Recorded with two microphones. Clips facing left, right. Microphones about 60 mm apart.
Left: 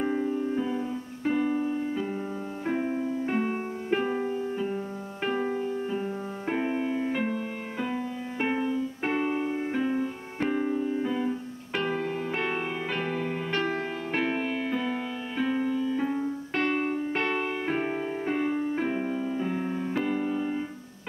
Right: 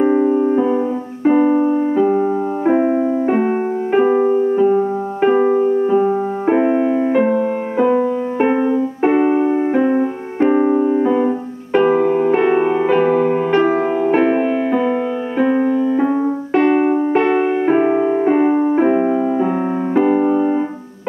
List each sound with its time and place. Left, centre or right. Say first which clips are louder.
0.0 s music: right 14 dB; right
1.2 s keyboard: right 14 dB; right
3.3 s music: right 13 dB; right
11.8 s music: right 16 dB; right